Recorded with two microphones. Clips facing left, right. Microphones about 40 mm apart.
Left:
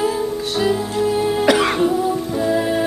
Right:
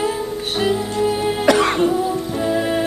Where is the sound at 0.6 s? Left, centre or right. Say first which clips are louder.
Even; centre.